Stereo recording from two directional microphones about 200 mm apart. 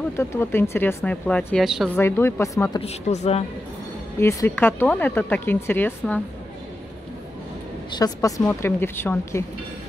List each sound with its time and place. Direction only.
0.2 s speech: 10° left (ahead or behind)
2.0 s speech: 10° left (ahead or behind)
2.8 s speech: 30° left (ahead or behind)
4.2 s speech: 15° left (ahead or behind)
7.9 s speech: 20° left (ahead or behind)